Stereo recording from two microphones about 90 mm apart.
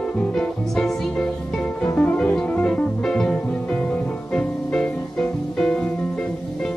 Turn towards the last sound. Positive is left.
turn(degrees=10)  # may be behind; listen again after turning